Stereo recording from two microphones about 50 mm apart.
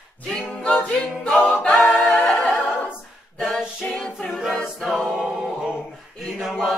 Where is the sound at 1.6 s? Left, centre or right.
Left.